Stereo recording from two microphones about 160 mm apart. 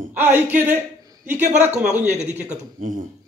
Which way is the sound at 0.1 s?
15° right (ahead or behind).